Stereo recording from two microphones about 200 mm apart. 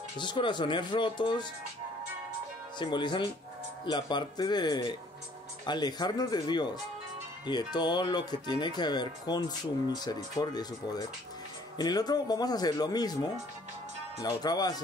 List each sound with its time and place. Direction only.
0.2 s speech: 25° left (ahead or behind)
2.8 s speech: 20° left (ahead or behind)